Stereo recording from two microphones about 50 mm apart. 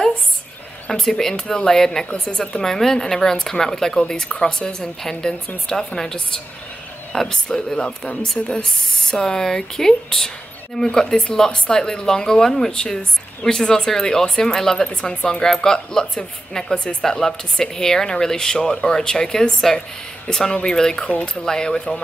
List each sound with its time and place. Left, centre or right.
0.8 s speech: centre
21.0 s speech: left
21.5 s speech: centre